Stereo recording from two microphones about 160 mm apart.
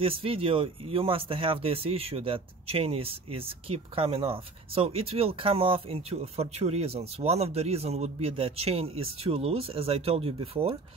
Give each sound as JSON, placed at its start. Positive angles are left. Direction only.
{"t": 0.0, "sound": "speech", "side_deg": -35}